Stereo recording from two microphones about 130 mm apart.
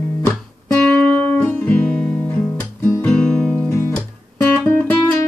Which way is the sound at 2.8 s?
20° left (ahead or behind).